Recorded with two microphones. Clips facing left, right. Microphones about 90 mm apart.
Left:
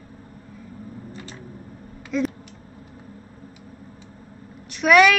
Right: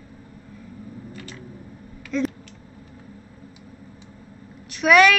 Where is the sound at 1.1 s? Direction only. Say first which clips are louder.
Even; 25° left (ahead or behind).